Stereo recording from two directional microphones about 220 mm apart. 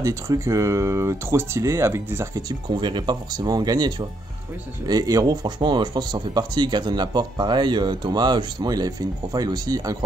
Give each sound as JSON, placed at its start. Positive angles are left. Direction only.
{"t": 0.0, "sound": "speech", "side_deg": -15}